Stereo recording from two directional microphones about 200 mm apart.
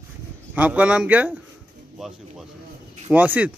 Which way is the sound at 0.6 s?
5° right (ahead or behind).